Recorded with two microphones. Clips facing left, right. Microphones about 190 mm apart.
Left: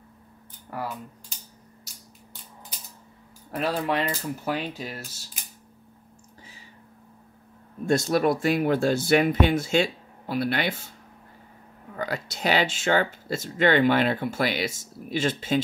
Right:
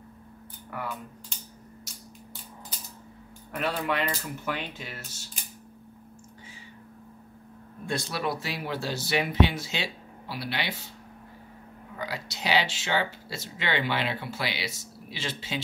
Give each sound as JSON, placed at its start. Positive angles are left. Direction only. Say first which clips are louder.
{"t": 0.7, "sound": "speech", "louder": "left 3 dB", "side_deg": 35}
{"t": 3.5, "sound": "speech", "louder": "left 3 dB", "side_deg": 35}
{"t": 7.8, "sound": "speech", "louder": "left 9 dB", "side_deg": 45}
{"t": 12.0, "sound": "speech", "louder": "left 6 dB", "side_deg": 50}